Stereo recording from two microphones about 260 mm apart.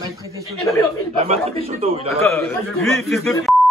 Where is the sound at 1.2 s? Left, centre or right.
Right.